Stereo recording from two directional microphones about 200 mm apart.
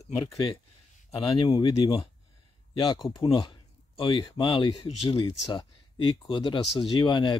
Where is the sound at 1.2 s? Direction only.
20° left (ahead or behind).